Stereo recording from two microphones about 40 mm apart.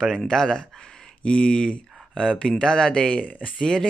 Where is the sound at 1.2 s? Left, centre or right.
Left.